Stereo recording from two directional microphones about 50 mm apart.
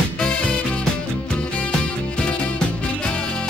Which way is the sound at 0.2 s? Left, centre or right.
Centre.